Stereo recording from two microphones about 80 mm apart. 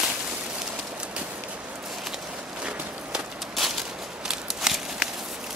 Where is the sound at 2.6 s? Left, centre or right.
Centre.